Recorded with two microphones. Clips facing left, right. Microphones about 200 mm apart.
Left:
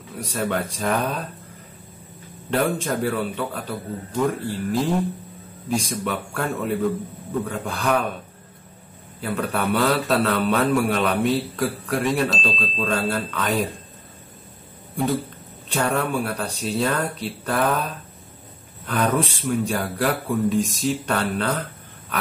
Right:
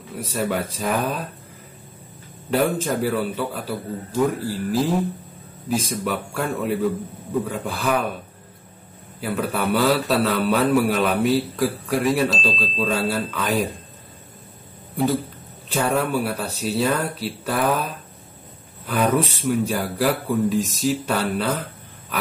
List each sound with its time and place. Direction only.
0.1 s speech: 5° right (ahead or behind)
2.5 s speech: centre (ahead or behind)
9.2 s speech: centre (ahead or behind)
15.7 s speech: 5° right (ahead or behind)